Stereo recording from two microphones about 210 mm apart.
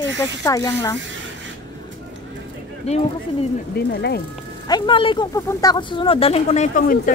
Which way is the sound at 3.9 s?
50° left (ahead or behind).